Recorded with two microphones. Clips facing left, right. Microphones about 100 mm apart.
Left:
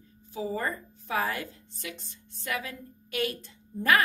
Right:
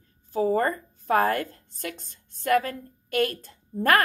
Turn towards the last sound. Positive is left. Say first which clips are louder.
# right 3 dB
turn(degrees=-45)  # may be behind; listen again after turning